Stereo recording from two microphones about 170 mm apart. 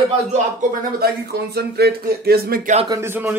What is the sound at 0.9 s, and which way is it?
Speech, 70° right (ahead or behind).